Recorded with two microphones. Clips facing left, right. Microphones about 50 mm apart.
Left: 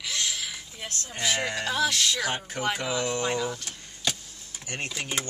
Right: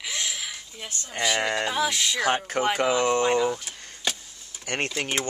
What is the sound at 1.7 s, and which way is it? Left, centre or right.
Speech, centre.